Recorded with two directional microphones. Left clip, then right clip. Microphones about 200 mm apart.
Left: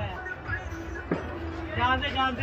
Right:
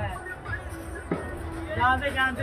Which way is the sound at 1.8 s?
15° right (ahead or behind).